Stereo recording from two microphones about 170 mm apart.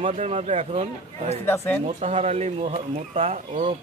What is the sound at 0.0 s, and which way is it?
Speech, 40° right (ahead or behind).